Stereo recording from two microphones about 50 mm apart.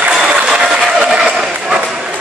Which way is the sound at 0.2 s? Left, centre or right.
Centre.